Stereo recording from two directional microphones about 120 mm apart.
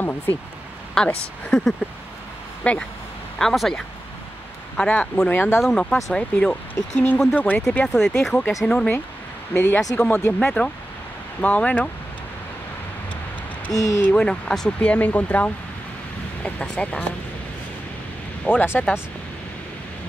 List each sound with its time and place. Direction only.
0.9 s speech: 5° left (ahead or behind)
5.6 s speech: 5° left (ahead or behind)
13.7 s speech: 30° left (ahead or behind)
14.0 s speech: 10° left (ahead or behind)
18.4 s speech: 15° left (ahead or behind)